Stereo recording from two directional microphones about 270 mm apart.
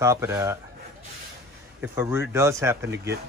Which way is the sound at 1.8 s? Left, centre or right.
Centre.